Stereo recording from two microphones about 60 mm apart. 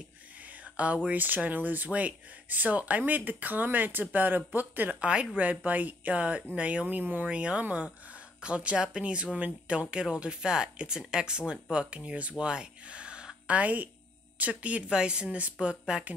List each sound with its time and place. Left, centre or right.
0.7 s speech: right
5.0 s speech: centre
7.2 s speech: centre